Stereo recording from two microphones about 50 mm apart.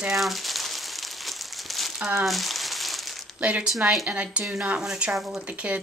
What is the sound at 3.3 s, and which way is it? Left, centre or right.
Speech, right.